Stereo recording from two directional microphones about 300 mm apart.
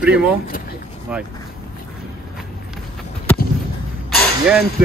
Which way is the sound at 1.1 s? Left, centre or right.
Centre.